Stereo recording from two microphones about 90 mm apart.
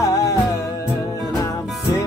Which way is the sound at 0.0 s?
35° left (ahead or behind).